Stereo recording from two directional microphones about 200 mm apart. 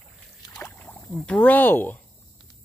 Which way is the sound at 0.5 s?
10° left (ahead or behind).